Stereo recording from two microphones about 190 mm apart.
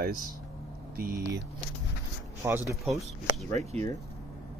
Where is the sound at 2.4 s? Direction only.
15° right (ahead or behind).